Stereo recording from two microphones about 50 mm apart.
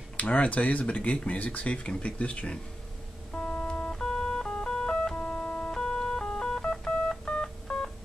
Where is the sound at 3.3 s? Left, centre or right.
Centre.